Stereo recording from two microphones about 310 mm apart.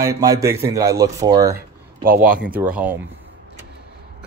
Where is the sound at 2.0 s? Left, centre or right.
Right.